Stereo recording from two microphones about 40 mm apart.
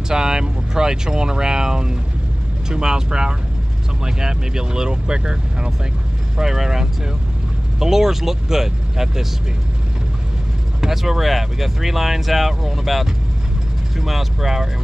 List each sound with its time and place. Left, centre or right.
0.1 s speech: centre
10.8 s speech: centre